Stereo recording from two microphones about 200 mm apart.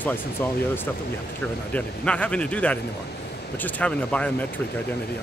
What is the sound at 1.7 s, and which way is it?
A man's voice, 5° left (ahead or behind).